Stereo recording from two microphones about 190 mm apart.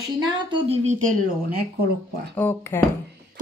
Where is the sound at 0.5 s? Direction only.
30° right (ahead or behind).